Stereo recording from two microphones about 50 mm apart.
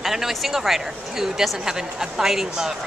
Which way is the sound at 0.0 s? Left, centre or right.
Centre.